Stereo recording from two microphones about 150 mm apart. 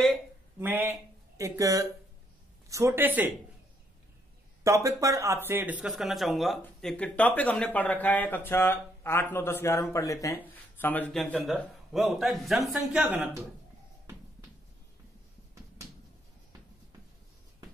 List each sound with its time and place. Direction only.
0.6 s speech: 15° right (ahead or behind)
4.6 s speech: 20° right (ahead or behind); by 13.1 s centre (ahead or behind)